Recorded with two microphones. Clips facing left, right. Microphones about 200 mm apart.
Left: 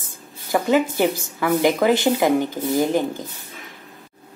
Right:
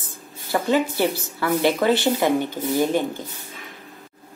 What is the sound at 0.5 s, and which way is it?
Speech, 20° left (ahead or behind).